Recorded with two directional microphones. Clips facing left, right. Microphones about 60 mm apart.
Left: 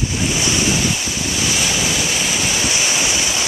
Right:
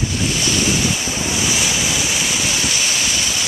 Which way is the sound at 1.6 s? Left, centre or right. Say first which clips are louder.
Left 1 dB; centre.